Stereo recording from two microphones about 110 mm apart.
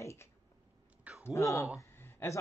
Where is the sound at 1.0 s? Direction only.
15° right (ahead or behind).